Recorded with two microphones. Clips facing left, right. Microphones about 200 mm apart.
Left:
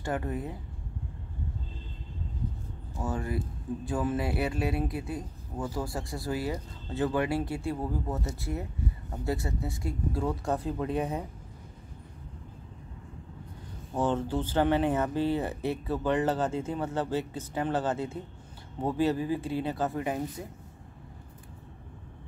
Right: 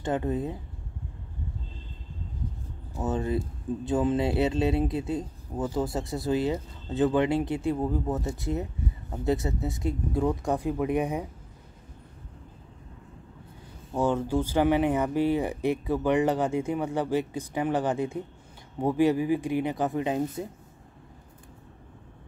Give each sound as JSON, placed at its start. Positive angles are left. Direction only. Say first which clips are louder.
{"t": 0.0, "sound": "speech", "louder": "right 5 dB", "side_deg": -20}
{"t": 3.0, "sound": "speech", "louder": "right 5 dB", "side_deg": -20}
{"t": 13.9, "sound": "speech", "louder": "right 3 dB", "side_deg": -10}